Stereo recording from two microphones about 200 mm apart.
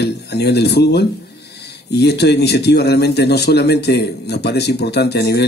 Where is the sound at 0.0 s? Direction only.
55° left (ahead or behind).